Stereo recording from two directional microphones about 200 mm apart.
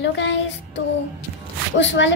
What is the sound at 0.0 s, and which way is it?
Speech, 60° left (ahead or behind).